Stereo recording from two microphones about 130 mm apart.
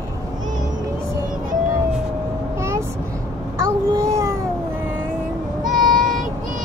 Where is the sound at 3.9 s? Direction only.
25° right (ahead or behind).